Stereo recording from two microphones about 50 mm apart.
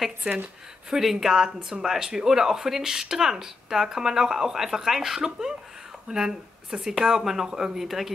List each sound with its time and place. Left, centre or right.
0.2 s a woman's voice: right
0.9 s speech: centre